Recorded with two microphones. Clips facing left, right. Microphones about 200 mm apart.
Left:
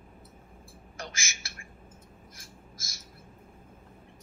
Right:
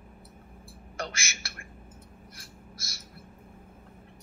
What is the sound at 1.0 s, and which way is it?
Speech, 65° right (ahead or behind).